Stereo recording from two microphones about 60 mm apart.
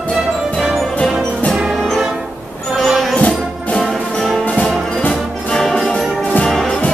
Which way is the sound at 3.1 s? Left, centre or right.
Left.